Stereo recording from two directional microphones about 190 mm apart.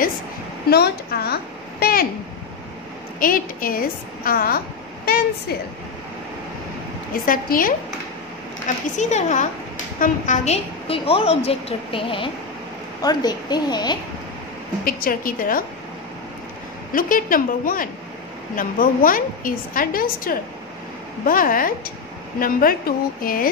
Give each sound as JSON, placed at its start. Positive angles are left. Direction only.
{"t": 0.7, "sound": "a woman's voice", "side_deg": 55}
{"t": 3.2, "sound": "a woman's voice", "side_deg": 50}
{"t": 7.2, "sound": "a woman's voice", "side_deg": 45}
{"t": 14.9, "sound": "a woman's voice", "side_deg": 50}
{"t": 16.9, "sound": "a woman's voice", "side_deg": 45}